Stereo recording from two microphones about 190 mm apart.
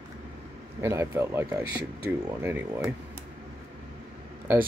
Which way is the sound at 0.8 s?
15° right (ahead or behind).